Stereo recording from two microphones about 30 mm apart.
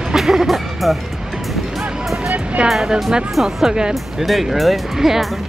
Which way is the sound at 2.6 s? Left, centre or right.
Right.